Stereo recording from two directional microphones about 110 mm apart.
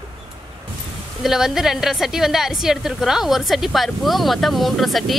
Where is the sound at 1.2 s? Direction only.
5° right (ahead or behind).